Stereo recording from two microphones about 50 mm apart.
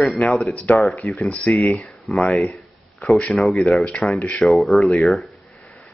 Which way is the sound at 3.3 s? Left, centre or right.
Centre.